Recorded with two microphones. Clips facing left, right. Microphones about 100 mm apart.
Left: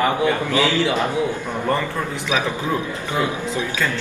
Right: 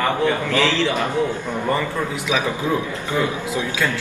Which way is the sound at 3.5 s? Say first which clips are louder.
Right 1 dB; 15° right (ahead or behind).